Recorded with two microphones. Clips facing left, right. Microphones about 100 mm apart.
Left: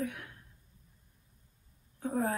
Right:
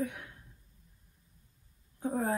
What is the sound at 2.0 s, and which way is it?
Speech, 20° right (ahead or behind).